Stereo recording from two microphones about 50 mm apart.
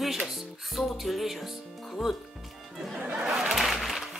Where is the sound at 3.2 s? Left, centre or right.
Centre.